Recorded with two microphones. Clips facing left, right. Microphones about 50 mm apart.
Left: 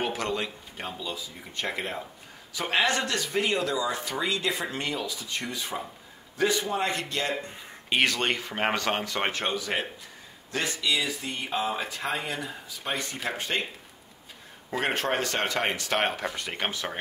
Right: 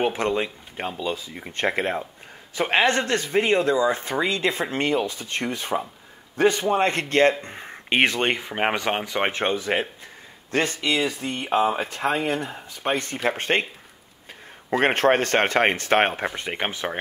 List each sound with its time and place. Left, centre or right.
0.0 s speech: right
0.9 s speech: right
8.0 s speech: right
10.5 s speech: right
14.7 s speech: right